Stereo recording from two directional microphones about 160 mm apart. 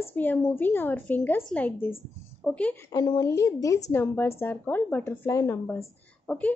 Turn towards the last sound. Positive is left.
turn(degrees=5)  # may be behind; listen again after turning